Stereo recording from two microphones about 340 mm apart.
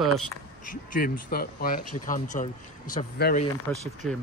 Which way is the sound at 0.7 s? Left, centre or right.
Left.